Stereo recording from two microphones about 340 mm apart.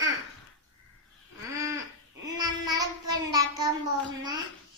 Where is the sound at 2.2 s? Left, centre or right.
Centre.